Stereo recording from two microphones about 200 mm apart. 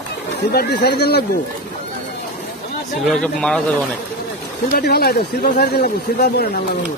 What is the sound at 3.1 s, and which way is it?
Speech, 5° left (ahead or behind).